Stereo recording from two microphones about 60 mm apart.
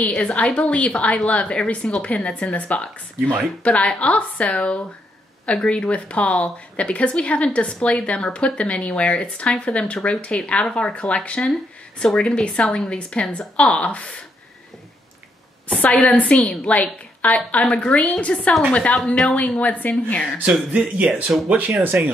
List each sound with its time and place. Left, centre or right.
0.0 s a woman's voice: centre
15.7 s a woman's voice: left
21.5 s speech: right